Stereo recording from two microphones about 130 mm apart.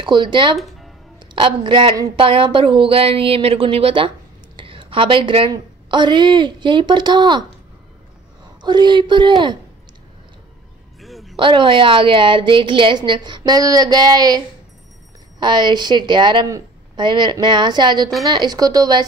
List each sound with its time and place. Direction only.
0.0 s a woman's voice: 40° right (ahead or behind)
0.6 s music: centre (ahead or behind)
1.2 s a woman's voice: 35° right (ahead or behind)
4.6 s a sound: 40° right (ahead or behind)
5.5 s a woman's voice: 35° right (ahead or behind)
8.5 s a woman's voice: 35° right (ahead or behind)
11.0 s music: centre (ahead or behind)
11.3 s a woman's voice: 40° right (ahead or behind)